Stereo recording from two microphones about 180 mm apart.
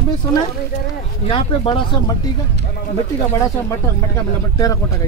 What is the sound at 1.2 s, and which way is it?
Speech, 30° left (ahead or behind).